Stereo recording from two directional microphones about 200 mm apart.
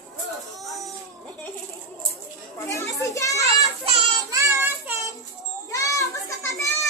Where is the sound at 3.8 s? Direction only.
30° right (ahead or behind).